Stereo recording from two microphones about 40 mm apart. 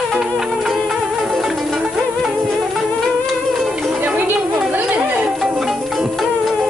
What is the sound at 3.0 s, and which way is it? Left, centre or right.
Music, centre.